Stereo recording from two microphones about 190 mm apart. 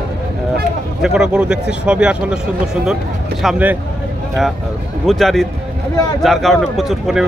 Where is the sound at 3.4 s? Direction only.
10° right (ahead or behind).